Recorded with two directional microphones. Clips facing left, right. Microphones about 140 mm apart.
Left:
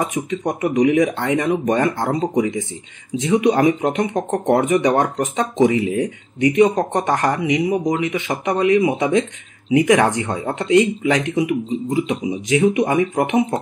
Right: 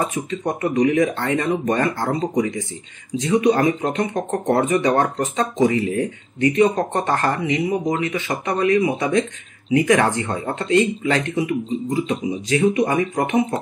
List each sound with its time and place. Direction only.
0.0 s speech: 15° left (ahead or behind)